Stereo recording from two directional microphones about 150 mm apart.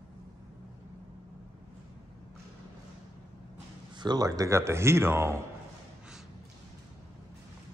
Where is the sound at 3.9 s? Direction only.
30° right (ahead or behind).